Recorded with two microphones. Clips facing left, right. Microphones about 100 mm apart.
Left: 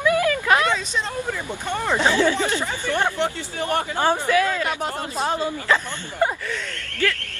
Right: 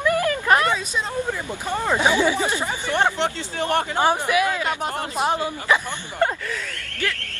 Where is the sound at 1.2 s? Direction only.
10° right (ahead or behind).